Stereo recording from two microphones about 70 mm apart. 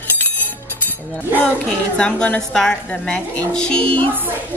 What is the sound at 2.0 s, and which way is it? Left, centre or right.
A woman's voice, centre.